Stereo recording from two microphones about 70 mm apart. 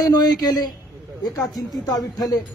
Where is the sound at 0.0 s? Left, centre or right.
Left.